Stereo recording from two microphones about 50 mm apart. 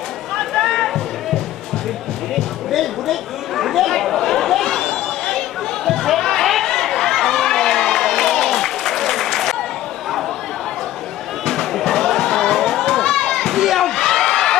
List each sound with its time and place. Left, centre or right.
0.4 s a sound: centre
2.3 s chatter: centre
11.4 s crowd: centre